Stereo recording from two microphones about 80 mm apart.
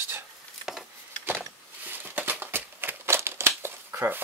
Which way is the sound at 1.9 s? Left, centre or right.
Right.